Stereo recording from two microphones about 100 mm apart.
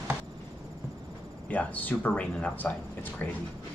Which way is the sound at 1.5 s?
15° left (ahead or behind).